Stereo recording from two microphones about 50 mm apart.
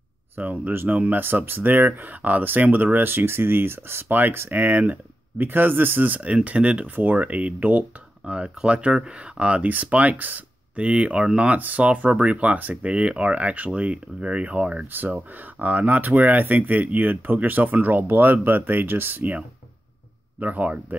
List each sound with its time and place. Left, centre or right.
0.4 s speech: right
4.1 s speech: right
8.6 s speech: centre; by 10.4 s right
10.8 s speech: right
14.9 s speech: right
20.3 s speech: right